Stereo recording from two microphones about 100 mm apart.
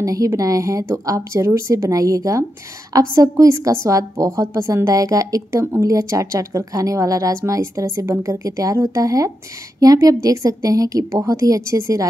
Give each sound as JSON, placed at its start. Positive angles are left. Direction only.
{"t": 0.0, "sound": "a woman's voice", "side_deg": -35}